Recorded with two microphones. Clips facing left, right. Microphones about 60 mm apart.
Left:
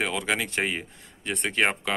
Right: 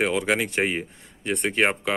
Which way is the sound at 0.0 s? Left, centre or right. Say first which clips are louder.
Right 4 dB; centre.